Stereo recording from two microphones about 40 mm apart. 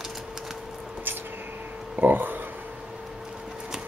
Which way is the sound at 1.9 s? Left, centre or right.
Right.